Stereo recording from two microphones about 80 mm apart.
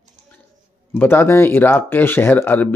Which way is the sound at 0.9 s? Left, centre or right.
Left.